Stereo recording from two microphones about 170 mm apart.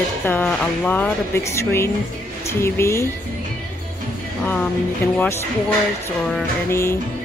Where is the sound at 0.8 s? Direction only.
10° left (ahead or behind).